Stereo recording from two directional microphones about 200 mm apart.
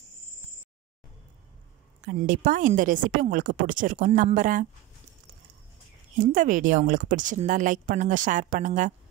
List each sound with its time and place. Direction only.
2.0 s a woman's voice: 40° right (ahead or behind)
6.1 s a woman's voice: 40° right (ahead or behind)